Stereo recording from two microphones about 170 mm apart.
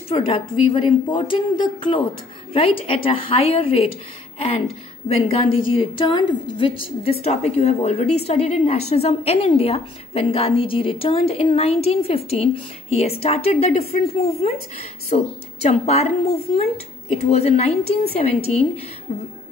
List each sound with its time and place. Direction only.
0.1 s a woman's voice: 35° left (ahead or behind)
7.1 s a woman's voice: 40° left (ahead or behind)